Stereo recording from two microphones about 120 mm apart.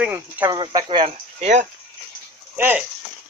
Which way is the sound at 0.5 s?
35° right (ahead or behind).